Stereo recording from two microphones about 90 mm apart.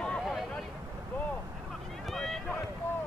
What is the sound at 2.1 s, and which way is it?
Run, 5° left (ahead or behind).